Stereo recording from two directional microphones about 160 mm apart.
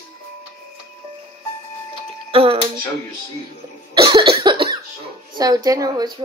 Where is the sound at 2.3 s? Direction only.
35° right (ahead or behind).